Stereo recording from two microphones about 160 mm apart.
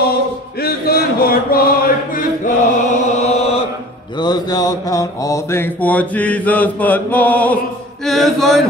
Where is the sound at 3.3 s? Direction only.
40° left (ahead or behind).